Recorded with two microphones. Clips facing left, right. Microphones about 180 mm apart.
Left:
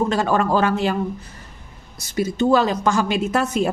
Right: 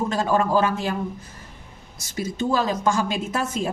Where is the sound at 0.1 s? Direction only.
70° left (ahead or behind).